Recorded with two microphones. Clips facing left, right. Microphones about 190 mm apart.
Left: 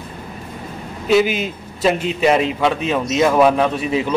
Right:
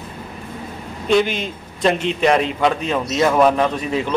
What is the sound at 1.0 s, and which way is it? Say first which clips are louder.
A man's voice: left 2 dB; 5° left (ahead or behind).